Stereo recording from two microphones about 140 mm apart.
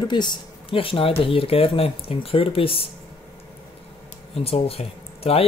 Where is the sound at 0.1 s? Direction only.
30° left (ahead or behind).